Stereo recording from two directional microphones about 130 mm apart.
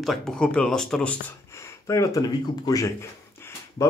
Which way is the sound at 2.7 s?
25° left (ahead or behind).